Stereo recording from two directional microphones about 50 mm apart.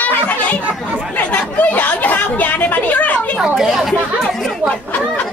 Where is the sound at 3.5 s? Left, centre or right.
Centre.